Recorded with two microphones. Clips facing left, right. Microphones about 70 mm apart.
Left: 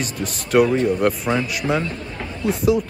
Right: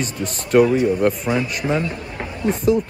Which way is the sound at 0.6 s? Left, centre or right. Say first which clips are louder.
Right 1 dB; centre.